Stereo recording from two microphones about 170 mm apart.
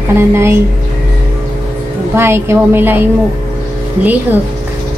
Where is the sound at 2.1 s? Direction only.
15° right (ahead or behind).